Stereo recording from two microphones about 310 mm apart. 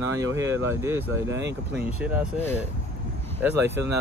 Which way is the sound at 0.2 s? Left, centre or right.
Centre.